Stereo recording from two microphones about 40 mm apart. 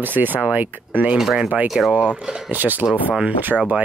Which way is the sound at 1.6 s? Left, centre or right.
Centre.